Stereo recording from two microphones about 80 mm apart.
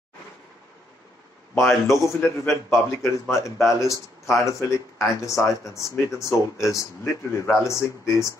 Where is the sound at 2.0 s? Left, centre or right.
Left.